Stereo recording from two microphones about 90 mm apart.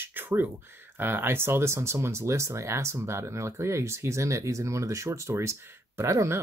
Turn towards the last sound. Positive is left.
turn(degrees=-35)  # may be behind; listen again after turning